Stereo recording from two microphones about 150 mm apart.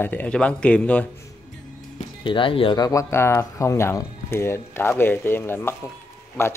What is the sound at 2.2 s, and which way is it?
Speech, 35° left (ahead or behind).